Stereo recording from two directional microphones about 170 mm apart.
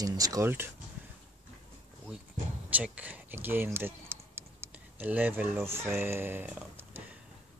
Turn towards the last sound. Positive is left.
turn(degrees=-10)  # may be behind; listen again after turning